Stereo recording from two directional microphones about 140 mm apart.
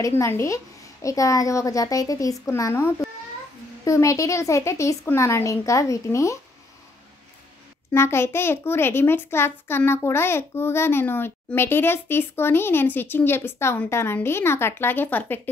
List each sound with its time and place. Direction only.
0.0 s speech: 20° left (ahead or behind)
7.9 s a child's voice: 20° left (ahead or behind)